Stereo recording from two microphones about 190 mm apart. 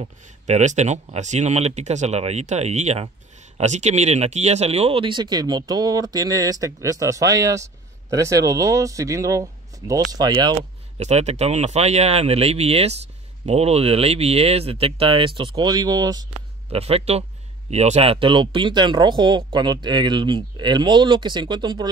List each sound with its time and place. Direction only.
0.0 s speech: 35° right (ahead or behind)
11.0 s speech: 35° right (ahead or behind); by 16.3 s 20° right (ahead or behind)
16.7 s speech: 30° right (ahead or behind)